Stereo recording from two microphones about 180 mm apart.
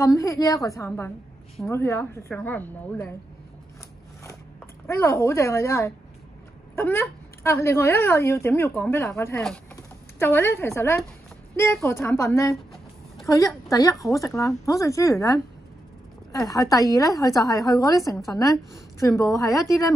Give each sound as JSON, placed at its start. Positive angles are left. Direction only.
{"t": 0.0, "sound": "a woman's voice", "side_deg": 20}
{"t": 4.8, "sound": "a woman's voice", "side_deg": 15}